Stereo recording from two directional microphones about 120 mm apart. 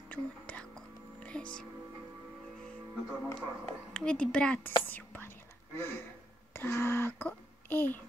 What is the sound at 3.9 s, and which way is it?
Speech, 10° left (ahead or behind).